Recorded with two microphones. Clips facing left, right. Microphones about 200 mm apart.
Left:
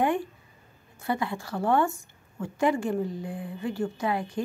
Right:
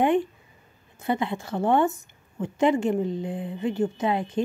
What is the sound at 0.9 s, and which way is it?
A woman's voice, 20° right (ahead or behind).